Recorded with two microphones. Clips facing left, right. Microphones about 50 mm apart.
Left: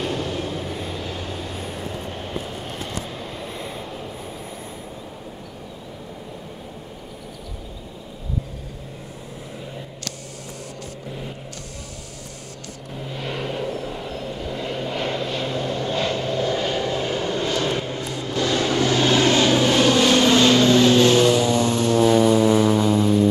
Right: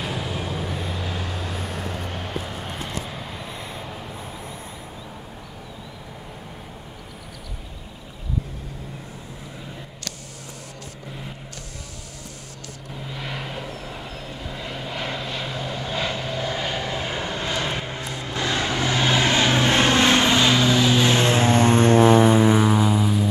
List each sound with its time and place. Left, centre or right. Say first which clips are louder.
0.0 s vehicle: left 3 dB; centre
2.7 s vehicle: left 1 dB; centre
13.1 s vehicle: left 4 dB; centre
21.1 s vehicle: left 2 dB; right; by 23.2 s centre